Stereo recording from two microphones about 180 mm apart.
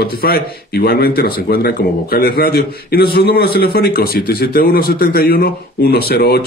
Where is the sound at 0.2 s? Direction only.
60° left (ahead or behind).